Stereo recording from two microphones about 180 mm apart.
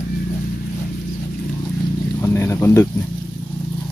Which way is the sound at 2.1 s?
15° left (ahead or behind).